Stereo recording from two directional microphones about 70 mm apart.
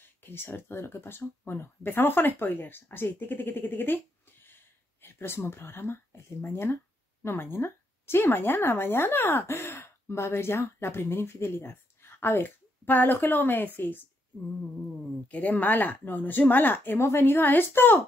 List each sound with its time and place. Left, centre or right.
0.2 s speech: left
5.0 s a sound: left
5.5 s a woman's voice: left
15.2 s speech: left
16.9 s speech: left